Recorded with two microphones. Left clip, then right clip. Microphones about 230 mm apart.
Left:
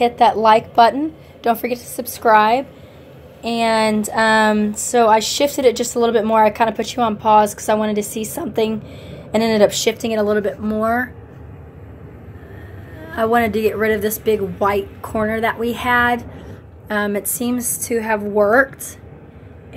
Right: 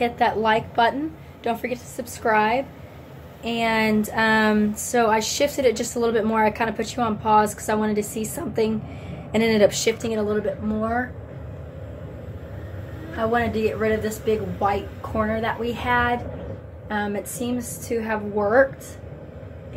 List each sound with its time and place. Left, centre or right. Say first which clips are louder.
0.0 s a woman's voice: left 8 dB; left
13.1 s a woman's voice: left 6 dB; left